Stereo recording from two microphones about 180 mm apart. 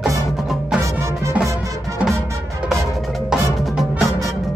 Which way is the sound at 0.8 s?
15° right (ahead or behind).